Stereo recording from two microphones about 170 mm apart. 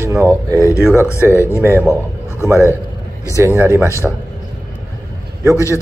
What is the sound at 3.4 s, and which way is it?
Speech, 15° right (ahead or behind).